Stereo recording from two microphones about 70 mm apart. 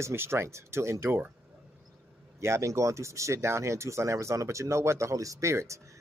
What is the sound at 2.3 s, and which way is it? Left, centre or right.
A man's voice, right.